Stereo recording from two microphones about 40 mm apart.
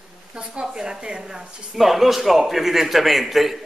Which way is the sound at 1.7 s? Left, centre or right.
Centre.